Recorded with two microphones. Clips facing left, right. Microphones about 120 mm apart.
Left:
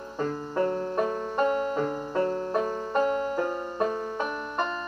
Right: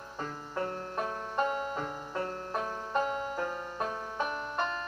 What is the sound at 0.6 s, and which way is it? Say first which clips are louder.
Music: left 8 dB; 45° left (ahead or behind).